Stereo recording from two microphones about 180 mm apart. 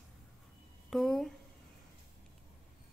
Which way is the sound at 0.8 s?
Centre (ahead or behind).